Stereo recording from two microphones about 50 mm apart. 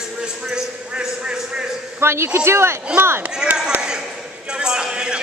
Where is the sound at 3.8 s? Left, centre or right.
Centre.